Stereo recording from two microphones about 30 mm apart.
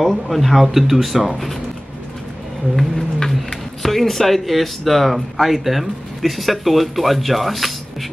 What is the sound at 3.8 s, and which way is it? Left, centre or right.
Speech, centre.